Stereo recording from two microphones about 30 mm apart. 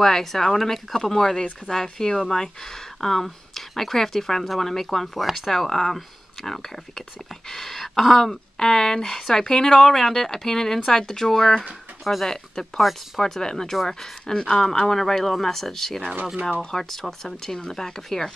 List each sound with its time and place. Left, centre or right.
0.0 s speech: centre
5.2 s speech: centre
5.5 s speech: centre
11.3 s speech: left
12.0 s speech: centre
12.3 s speech: centre
17.5 s speech: left